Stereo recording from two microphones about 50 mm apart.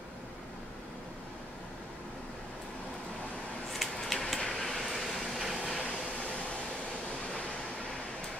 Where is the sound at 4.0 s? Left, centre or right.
Centre.